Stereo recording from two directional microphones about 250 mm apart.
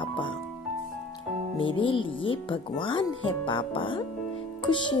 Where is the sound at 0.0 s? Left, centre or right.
Centre.